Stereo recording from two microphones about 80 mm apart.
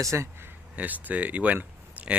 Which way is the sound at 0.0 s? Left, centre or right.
Right.